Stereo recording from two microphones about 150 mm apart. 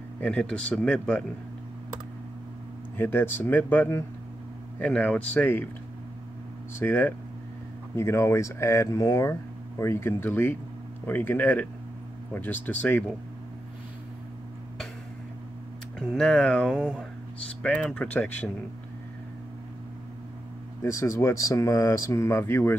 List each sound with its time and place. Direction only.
0.2 s speech: 5° left (ahead or behind)
3.0 s speech: 15° left (ahead or behind)
6.8 s speech: 15° left (ahead or behind)
16.0 s speech: centre (ahead or behind)
16.6 s speech: 5° right (ahead or behind)
17.6 s speech: 5° left (ahead or behind)
20.8 s speech: 20° left (ahead or behind)